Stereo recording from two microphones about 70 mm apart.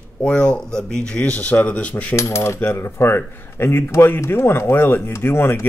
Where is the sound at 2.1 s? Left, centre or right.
Left.